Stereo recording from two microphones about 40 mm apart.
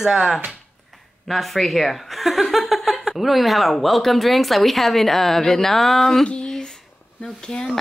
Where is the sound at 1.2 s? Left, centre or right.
Centre.